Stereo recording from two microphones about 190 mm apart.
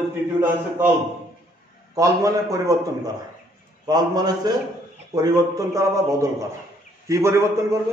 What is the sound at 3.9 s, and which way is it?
A man's voice, 20° right (ahead or behind).